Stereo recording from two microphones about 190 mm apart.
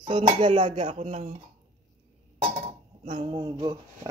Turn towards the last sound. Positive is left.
turn(degrees=-20)  # may be behind; listen again after turning